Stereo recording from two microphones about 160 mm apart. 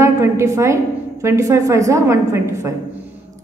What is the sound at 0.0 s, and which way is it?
A woman's voice, 15° right (ahead or behind).